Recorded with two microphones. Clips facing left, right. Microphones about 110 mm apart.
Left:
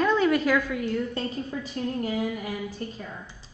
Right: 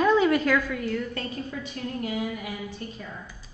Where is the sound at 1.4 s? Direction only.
35° left (ahead or behind).